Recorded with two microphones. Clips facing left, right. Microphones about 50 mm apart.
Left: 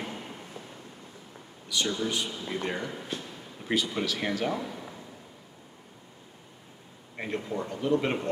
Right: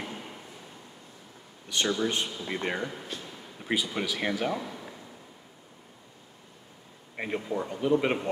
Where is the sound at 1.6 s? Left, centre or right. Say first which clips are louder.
Right 1 dB; right.